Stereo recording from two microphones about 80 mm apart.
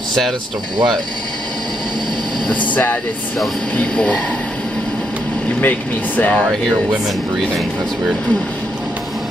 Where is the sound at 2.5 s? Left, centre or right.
Left.